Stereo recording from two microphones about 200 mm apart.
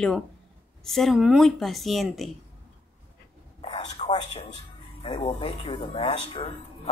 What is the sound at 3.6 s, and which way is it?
Whispering, 30° left (ahead or behind).